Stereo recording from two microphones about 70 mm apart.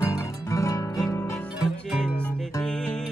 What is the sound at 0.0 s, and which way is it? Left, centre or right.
Music, left.